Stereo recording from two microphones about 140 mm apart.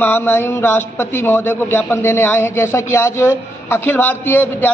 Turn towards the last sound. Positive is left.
turn(degrees=15)  # may be behind; listen again after turning